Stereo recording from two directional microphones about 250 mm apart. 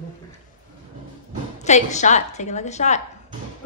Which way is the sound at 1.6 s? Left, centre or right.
Left.